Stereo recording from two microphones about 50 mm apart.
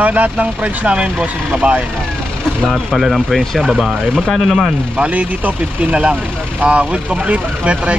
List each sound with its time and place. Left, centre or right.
0.0 s speech: right
2.6 s speech: centre
4.9 s speech: right